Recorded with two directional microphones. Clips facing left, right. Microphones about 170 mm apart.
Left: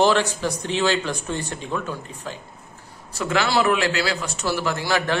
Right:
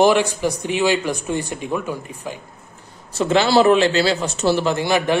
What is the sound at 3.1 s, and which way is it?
A man's voice, 25° right (ahead or behind).